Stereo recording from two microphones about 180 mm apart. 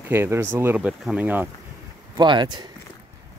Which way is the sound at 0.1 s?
15° right (ahead or behind).